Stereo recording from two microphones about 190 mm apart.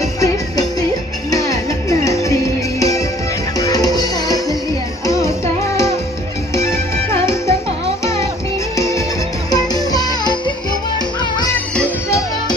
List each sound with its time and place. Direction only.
0.2 s music: 20° left (ahead or behind)
6.5 s music: 15° left (ahead or behind)
8.7 s music: 15° left (ahead or behind)